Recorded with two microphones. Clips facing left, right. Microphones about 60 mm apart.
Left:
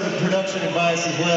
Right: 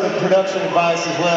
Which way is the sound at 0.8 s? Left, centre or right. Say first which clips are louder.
Right 4 dB; right.